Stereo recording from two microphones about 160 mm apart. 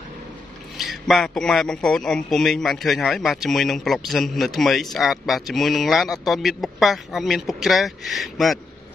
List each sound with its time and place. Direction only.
0.7 s a man's voice: centre (ahead or behind)